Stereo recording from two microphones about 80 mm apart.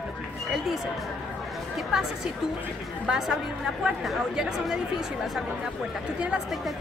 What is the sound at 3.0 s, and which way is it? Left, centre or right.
Speech, centre.